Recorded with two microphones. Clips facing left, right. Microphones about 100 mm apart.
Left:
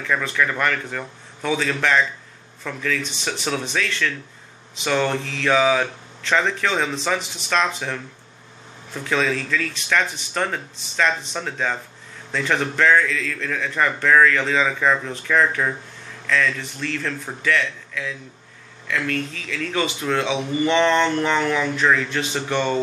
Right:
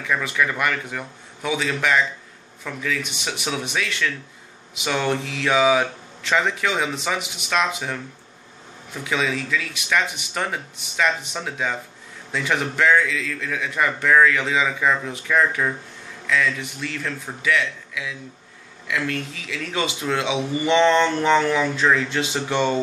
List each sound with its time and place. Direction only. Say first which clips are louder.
0.0 s speech: left 1 dB; 10° right (ahead or behind)